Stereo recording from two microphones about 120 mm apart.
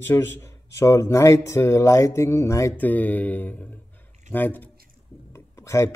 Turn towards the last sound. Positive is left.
turn(degrees=25)  # may be behind; listen again after turning